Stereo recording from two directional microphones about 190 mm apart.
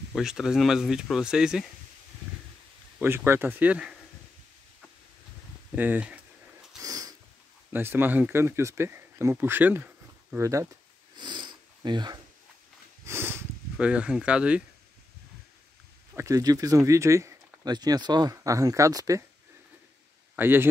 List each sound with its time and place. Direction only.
0.1 s speech: 5° right (ahead or behind)
3.0 s speech: 10° right (ahead or behind)
5.8 s a sound: 10° right (ahead or behind)
6.8 s a sound: 20° right (ahead or behind)
7.7 s speech: 10° right (ahead or behind)
11.1 s sniff: 25° right (ahead or behind)
13.0 s sniff: 10° right (ahead or behind)
16.2 s speech: 15° right (ahead or behind)
20.3 s speech: 10° right (ahead or behind)